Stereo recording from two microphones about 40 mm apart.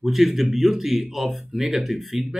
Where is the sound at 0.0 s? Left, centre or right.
Centre.